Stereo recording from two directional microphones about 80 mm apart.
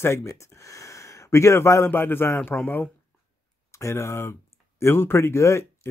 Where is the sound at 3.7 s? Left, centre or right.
Left.